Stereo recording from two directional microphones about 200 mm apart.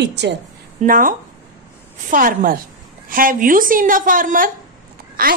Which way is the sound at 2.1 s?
45° right (ahead or behind).